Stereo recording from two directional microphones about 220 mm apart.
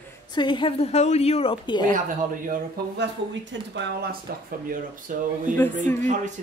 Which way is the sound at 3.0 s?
55° right (ahead or behind).